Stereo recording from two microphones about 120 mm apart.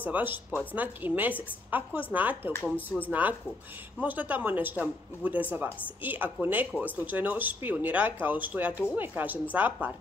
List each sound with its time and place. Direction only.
0.0 s speech: 15° right (ahead or behind)
2.5 s speech: 15° left (ahead or behind)
3.1 s speech: 15° right (ahead or behind)